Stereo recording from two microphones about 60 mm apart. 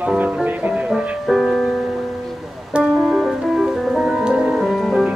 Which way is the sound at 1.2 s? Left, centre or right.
Centre.